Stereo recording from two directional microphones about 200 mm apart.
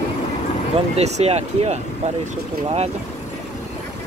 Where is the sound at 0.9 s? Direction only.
35° right (ahead or behind).